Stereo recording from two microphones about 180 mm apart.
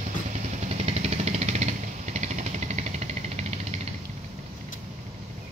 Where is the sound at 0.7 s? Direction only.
35° right (ahead or behind).